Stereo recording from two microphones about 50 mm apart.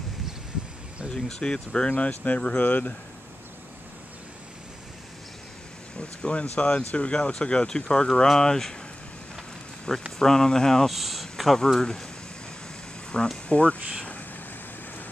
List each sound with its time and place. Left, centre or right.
1.1 s speech: centre; by 2.9 s left
5.9 s air conditioning: centre
6.4 s speech: left; by 8.7 s centre
10.1 s speech: centre
10.9 s speech: centre
13.1 s speech: centre